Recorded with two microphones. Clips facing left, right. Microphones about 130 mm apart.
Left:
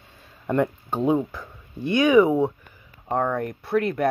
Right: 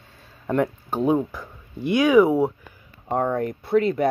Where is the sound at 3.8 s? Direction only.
5° left (ahead or behind).